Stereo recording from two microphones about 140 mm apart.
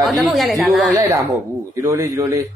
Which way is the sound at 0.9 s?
25° right (ahead or behind).